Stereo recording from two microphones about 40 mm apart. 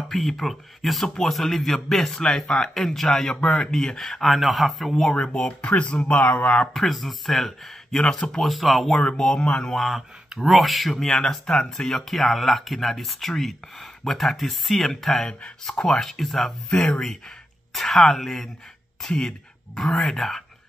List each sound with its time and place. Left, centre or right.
0.1 s speech: centre
1.0 s speech: centre
4.0 s speech: centre
5.1 s speech: left
6.7 s speech: centre
8.0 s speech: centre
8.4 s speech: centre
9.0 s speech: centre
9.8 s speech: centre
11.0 s speech: centre
16.4 s speech: left
17.8 s speech: centre